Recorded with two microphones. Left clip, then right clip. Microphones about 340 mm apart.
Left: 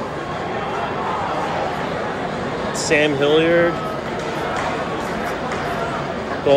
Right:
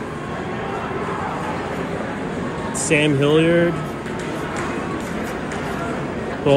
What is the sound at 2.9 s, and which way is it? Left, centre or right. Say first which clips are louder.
Speech: left 1 dB; centre.